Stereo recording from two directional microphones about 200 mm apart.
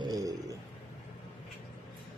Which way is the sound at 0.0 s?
20° right (ahead or behind).